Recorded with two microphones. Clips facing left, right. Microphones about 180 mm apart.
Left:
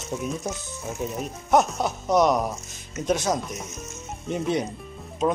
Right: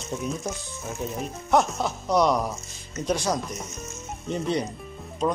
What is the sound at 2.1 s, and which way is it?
Speech, 20° left (ahead or behind).